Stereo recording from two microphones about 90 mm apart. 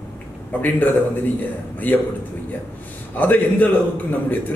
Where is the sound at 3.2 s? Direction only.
20° left (ahead or behind).